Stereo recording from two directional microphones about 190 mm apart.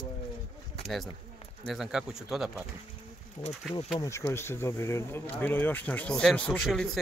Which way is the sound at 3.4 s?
35° left (ahead or behind).